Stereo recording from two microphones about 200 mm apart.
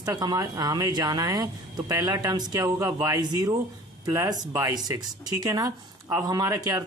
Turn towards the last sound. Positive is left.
turn(degrees=-20)  # may be behind; listen again after turning